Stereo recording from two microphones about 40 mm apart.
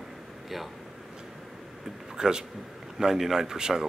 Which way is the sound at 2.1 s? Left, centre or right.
Centre.